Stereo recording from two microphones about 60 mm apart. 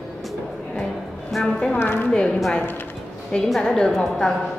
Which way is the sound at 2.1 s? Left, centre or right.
Centre.